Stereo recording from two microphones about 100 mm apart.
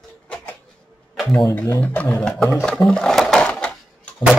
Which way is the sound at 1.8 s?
20° left (ahead or behind).